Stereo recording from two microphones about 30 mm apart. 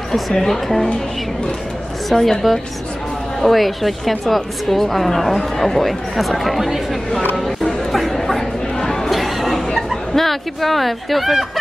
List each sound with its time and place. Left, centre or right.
0.3 s speech: centre
2.1 s a woman's voice: centre
3.3 s a woman's voice: centre
8.7 s a sound: centre
9.1 s a sound: centre
10.1 s a woman's voice: centre